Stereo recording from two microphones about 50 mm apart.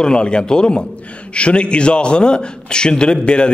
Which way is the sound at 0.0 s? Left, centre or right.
Centre.